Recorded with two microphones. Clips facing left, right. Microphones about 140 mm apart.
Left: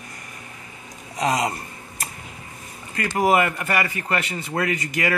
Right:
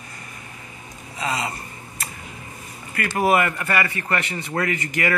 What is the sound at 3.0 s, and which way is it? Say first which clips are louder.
A man's voice: even; 15° left (ahead or behind).